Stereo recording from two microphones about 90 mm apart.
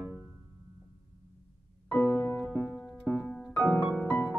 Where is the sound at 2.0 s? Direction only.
25° left (ahead or behind).